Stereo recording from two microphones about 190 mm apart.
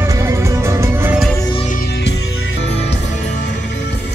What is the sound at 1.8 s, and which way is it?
Music, 60° left (ahead or behind).